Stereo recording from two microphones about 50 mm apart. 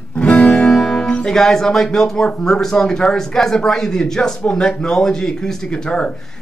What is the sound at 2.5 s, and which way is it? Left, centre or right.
Speech, centre.